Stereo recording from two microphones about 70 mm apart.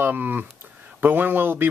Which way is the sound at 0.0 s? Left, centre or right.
Right.